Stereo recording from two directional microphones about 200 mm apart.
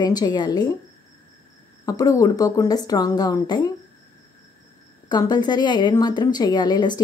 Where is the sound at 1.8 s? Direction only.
15° left (ahead or behind).